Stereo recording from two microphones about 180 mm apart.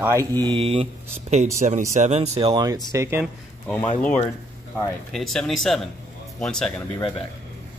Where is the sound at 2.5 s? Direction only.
20° right (ahead or behind).